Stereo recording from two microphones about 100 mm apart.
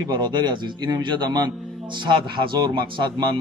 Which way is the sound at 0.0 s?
45° right (ahead or behind).